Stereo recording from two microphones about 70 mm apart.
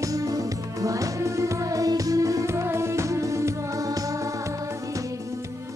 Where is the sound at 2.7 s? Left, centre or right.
Right.